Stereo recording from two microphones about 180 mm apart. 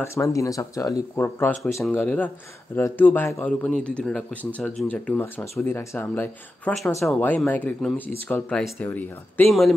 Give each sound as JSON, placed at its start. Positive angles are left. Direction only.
{"t": 0.0, "sound": "speech", "side_deg": 15}
{"t": 9.5, "sound": "speech", "side_deg": 0}